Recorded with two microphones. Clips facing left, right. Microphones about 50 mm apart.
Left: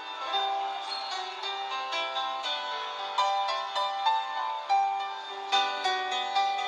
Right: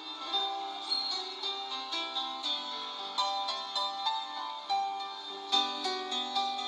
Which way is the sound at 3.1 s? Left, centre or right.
Left.